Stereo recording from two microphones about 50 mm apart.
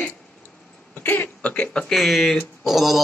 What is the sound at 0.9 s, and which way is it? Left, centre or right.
Throat clearing, left.